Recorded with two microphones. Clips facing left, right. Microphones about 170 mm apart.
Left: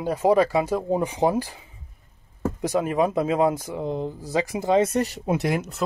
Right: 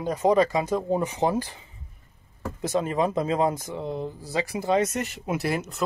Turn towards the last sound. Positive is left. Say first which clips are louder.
# left 2 dB
turn(degrees=0)  # may be behind; listen again after turning